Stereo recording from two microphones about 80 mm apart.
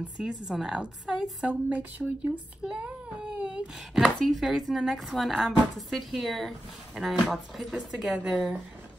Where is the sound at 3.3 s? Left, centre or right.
Centre.